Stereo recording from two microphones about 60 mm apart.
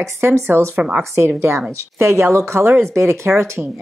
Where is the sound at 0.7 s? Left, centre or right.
Centre.